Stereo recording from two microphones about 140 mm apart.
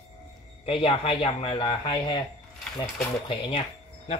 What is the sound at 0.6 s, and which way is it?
Speech, 45° left (ahead or behind).